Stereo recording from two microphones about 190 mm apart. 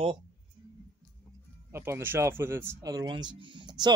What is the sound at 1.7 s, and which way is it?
Speech, 15° right (ahead or behind).